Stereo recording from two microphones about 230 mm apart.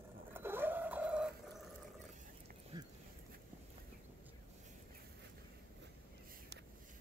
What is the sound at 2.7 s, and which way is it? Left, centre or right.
Dog, centre.